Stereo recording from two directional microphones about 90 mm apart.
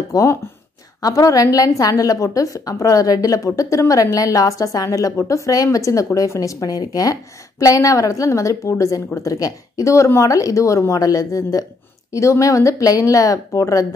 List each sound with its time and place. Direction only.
0.1 s a woman's voice: 35° left (ahead or behind)